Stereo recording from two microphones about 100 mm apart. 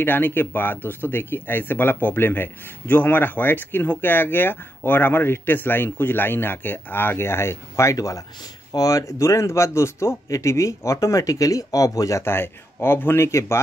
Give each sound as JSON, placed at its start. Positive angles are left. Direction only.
{"t": 0.0, "sound": "speech", "side_deg": 20}